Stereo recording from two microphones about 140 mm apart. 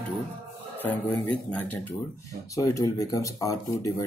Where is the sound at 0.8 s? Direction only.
10° left (ahead or behind).